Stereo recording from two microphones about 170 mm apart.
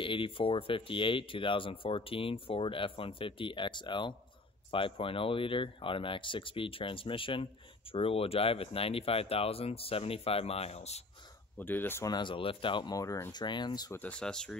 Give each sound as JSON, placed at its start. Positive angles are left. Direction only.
{"t": 0.0, "sound": "speech", "side_deg": 30}
{"t": 11.5, "sound": "speech", "side_deg": 10}
{"t": 12.1, "sound": "speech", "side_deg": 30}
{"t": 13.9, "sound": "speech", "side_deg": 5}